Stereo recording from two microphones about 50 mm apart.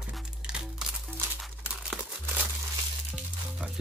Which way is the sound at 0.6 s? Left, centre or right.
Centre.